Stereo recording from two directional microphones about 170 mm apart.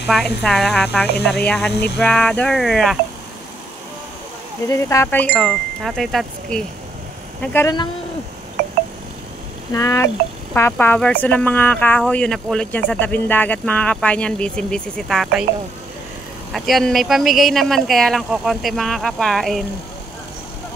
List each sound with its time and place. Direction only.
0.0 s speech: centre (ahead or behind)
1.0 s speech: 75° left (ahead or behind)
2.0 s speech: 5° left (ahead or behind)
4.6 s speech: 15° left (ahead or behind)
7.5 s speech: 20° left (ahead or behind)
9.7 s speech: 20° left (ahead or behind); by 15.4 s centre (ahead or behind)
16.5 s speech: centre (ahead or behind)